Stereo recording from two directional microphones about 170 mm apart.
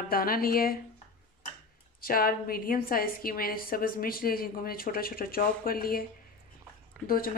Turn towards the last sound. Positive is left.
turn(degrees=5)  # may be behind; listen again after turning